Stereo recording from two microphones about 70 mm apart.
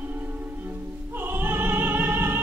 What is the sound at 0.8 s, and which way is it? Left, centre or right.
Opera, right.